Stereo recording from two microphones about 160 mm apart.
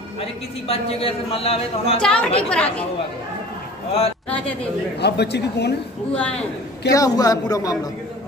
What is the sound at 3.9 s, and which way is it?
Speech, 40° left (ahead or behind).